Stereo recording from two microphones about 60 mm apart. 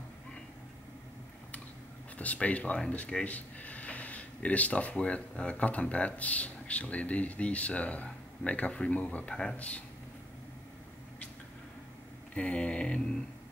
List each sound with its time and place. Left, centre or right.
2.1 s speech: left
9.3 s speech: centre
12.4 s speech: centre